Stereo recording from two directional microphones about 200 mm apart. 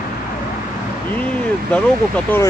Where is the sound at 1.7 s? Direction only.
5° left (ahead or behind).